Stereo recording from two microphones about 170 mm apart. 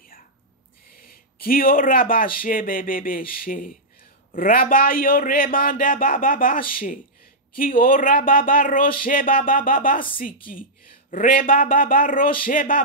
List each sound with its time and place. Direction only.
1.0 s a man's voice: 60° left (ahead or behind)